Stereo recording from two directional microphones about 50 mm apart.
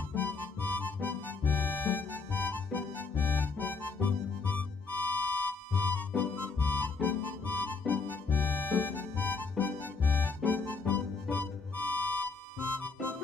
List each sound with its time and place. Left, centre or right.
0.1 s music: left